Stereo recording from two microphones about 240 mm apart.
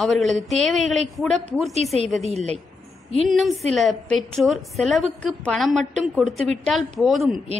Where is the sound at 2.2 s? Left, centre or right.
Right.